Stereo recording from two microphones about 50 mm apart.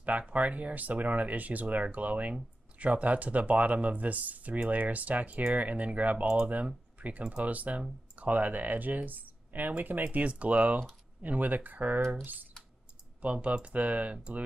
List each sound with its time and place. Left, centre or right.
0.3 s speech: right
13.2 s speech: right